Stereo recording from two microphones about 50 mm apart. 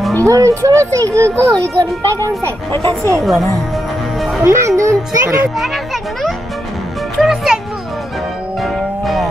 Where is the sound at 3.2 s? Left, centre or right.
Centre.